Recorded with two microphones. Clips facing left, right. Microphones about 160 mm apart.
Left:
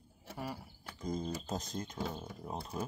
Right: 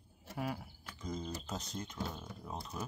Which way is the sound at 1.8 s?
30° left (ahead or behind).